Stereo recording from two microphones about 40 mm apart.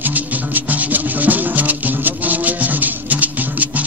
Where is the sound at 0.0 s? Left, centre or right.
Right.